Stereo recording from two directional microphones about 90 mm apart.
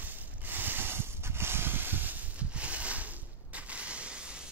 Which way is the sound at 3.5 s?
15° right (ahead or behind).